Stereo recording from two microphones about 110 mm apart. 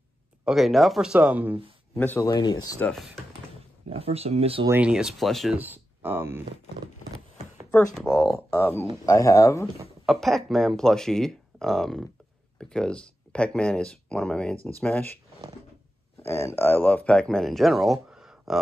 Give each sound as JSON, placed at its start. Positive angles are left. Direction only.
{"t": 0.5, "sound": "speech", "side_deg": 0}
{"t": 2.0, "sound": "speech", "side_deg": 15}
{"t": 2.2, "sound": "speech", "side_deg": 40}
{"t": 3.9, "sound": "speech", "side_deg": -65}
{"t": 4.6, "sound": "speech", "side_deg": -15}
{"t": 5.6, "sound": "speech", "side_deg": -20}
{"t": 8.1, "sound": "speech", "side_deg": 5}
{"t": 8.5, "sound": "speech", "side_deg": 20}
{"t": 9.0, "sound": "speech", "side_deg": 30}
{"t": 10.0, "sound": "speech", "side_deg": 0}
{"t": 16.3, "sound": "speech", "side_deg": 25}
{"t": 18.1, "sound": "a sound", "side_deg": -5}